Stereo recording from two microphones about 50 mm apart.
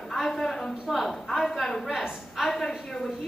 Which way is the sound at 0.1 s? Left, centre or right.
Centre.